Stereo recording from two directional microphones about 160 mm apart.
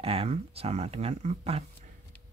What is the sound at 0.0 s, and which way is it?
Speech, 40° right (ahead or behind).